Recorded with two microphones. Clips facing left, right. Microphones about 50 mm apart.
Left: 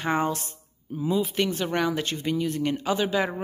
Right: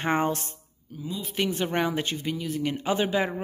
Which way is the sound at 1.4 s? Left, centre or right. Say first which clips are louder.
Left 1 dB; right.